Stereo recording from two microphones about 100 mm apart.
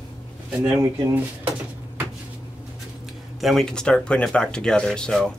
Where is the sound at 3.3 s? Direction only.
Centre (ahead or behind).